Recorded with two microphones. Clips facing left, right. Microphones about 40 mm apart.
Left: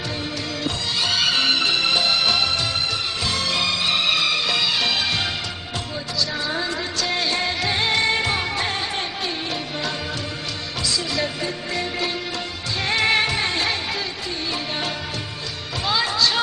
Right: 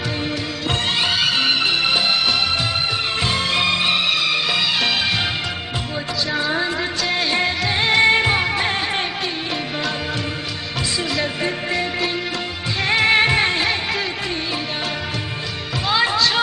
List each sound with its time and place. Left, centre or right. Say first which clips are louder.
1.1 s music: left 2 dB; centre
3.3 s music: right 3 dB; right
3.9 s music: right 1 dB; centre
6.3 s a sound: right 8 dB; right
7.4 s music: right 3 dB; centre
8.0 s music: right 6 dB; right
11.7 s music: right 3 dB; centre
13.2 s music: right 5 dB; right